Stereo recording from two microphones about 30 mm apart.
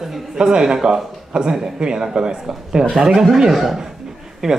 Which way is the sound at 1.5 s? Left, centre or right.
Centre.